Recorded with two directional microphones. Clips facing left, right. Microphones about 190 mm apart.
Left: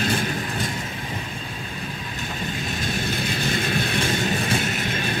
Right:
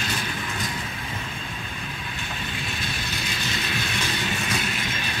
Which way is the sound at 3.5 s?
50° left (ahead or behind).